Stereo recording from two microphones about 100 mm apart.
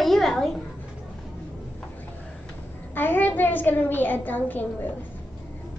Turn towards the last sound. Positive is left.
turn(degrees=20)  # may be behind; listen again after turning